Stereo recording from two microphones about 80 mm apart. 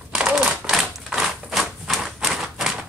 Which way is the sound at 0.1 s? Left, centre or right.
Centre.